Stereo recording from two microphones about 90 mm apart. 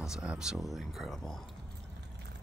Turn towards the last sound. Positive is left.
turn(degrees=5)  # may be behind; listen again after turning